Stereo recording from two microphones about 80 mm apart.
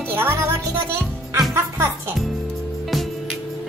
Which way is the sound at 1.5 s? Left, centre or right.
Right.